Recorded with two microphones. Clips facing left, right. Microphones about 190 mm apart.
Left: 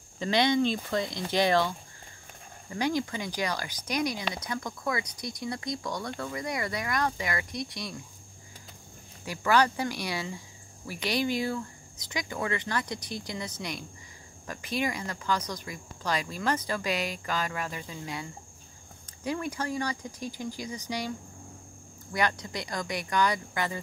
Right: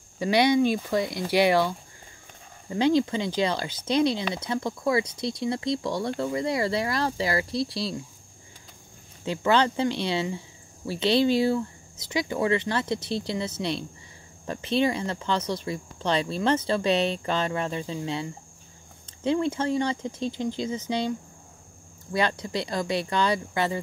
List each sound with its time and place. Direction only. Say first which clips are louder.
0.2 s speech: right 4 dB; 10° right (ahead or behind)
2.7 s speech: right 7 dB; 25° right (ahead or behind)
9.2 s speech: right 3 dB; 25° right (ahead or behind)
11.1 s speech: right 7 dB; 15° left (ahead or behind)
12.3 s speech: right 7 dB; 20° right (ahead or behind)
14.4 s speech: right 7 dB; 25° right (ahead or behind)
22.1 s speech: right 4 dB; 25° right (ahead or behind)